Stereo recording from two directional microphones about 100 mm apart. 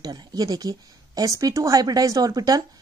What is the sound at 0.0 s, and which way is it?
A woman's voice, 40° right (ahead or behind).